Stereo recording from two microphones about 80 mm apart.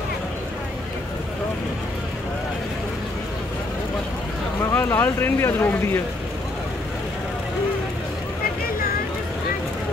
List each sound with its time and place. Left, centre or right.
4.7 s speech: left